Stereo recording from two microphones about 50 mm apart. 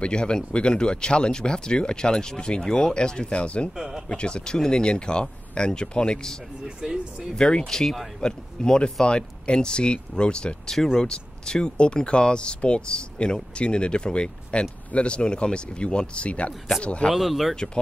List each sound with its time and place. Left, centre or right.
0.0 s speech: centre
3.7 s speech: centre
4.1 s speech: centre
6.6 s speech: centre
7.3 s speech: centre
7.8 s speech: centre
8.2 s speech: centre
17.1 s speech: centre